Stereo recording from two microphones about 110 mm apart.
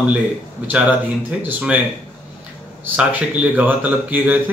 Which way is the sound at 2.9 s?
10° right (ahead or behind).